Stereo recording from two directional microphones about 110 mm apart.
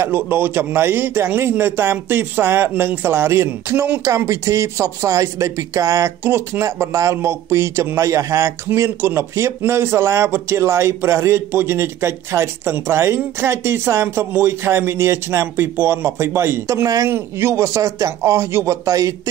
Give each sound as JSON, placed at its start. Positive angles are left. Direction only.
{"t": 0.0, "sound": "speech", "side_deg": -20}